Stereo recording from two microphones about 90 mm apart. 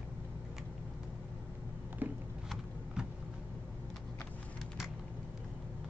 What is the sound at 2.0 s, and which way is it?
Computer keyboard, 20° right (ahead or behind).